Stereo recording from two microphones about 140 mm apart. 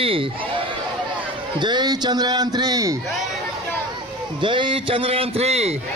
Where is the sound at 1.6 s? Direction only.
30° right (ahead or behind).